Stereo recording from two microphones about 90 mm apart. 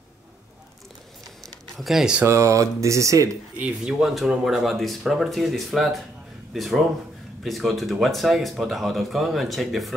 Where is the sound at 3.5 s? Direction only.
10° right (ahead or behind).